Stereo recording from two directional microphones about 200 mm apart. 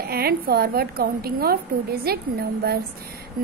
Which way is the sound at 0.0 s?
50° right (ahead or behind).